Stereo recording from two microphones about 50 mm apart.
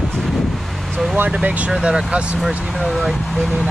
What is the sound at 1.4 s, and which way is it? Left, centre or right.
Speech, right.